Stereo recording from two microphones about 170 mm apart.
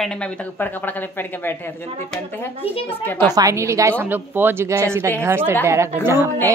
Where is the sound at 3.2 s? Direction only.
20° right (ahead or behind).